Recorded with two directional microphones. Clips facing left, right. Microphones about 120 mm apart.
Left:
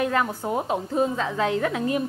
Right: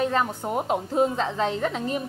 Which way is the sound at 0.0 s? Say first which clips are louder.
Even; 25° right (ahead or behind).